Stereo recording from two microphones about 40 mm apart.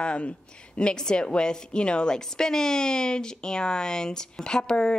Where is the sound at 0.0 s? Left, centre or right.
Left.